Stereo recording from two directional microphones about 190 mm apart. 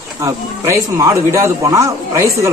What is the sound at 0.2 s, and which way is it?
Speech, 15° right (ahead or behind).